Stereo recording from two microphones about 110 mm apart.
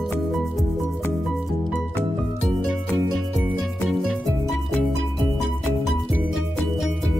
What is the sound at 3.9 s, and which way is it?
Music, 5° right (ahead or behind).